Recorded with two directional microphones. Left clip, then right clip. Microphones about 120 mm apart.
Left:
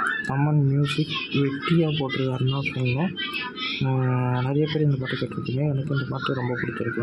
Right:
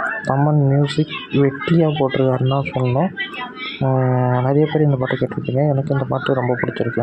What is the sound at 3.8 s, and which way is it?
Speech, 15° right (ahead or behind).